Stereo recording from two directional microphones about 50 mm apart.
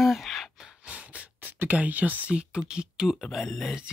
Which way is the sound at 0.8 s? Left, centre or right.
Right.